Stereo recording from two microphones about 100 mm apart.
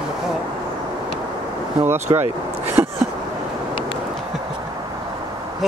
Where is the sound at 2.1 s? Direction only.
50° right (ahead or behind).